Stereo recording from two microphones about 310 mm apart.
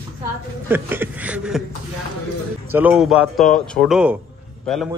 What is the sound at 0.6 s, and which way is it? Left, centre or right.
A man's voice, centre.